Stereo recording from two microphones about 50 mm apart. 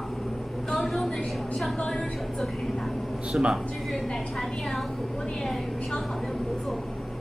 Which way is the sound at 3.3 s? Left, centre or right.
Right.